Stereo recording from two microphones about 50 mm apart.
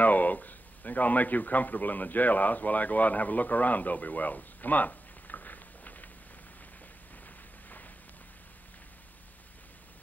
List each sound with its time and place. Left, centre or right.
0.0 s a man's voice: left